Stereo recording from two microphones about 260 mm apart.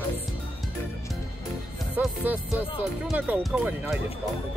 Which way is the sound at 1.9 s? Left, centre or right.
Centre.